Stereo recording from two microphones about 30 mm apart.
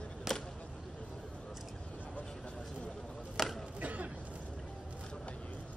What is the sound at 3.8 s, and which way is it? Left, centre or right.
Cough, right.